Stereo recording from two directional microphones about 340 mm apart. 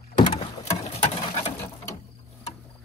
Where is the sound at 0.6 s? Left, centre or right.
Centre.